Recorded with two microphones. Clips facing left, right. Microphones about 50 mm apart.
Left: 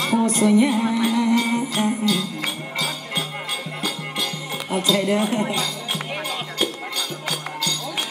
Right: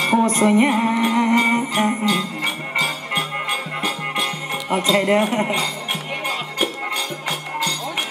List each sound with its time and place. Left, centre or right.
0.0 s music: right